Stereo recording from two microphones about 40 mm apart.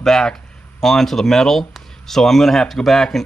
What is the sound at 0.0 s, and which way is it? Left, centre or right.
Speech, centre.